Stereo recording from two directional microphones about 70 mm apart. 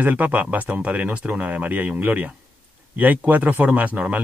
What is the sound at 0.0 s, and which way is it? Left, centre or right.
Speech, right.